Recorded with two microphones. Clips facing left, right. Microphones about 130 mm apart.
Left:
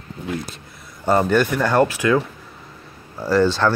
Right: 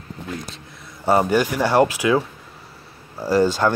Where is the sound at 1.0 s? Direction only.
10° right (ahead or behind).